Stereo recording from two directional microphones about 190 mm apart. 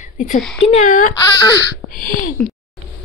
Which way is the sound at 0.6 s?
40° left (ahead or behind).